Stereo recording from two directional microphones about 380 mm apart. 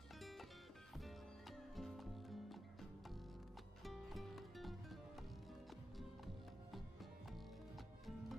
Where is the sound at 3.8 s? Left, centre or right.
Centre.